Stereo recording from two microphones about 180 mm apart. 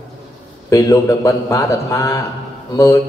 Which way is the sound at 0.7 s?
15° left (ahead or behind).